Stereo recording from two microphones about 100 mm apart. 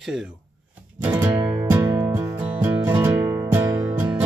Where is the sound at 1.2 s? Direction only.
20° right (ahead or behind).